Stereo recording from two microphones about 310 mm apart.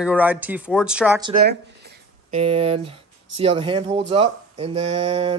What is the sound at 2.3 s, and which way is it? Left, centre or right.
Speech, centre.